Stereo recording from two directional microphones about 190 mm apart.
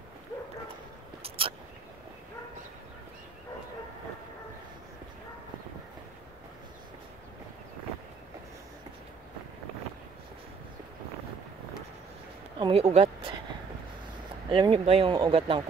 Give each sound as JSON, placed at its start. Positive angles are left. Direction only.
{"t": 1.2, "sound": "a sound", "side_deg": -30}
{"t": 12.5, "sound": "speech", "side_deg": -30}
{"t": 14.5, "sound": "speech", "side_deg": -25}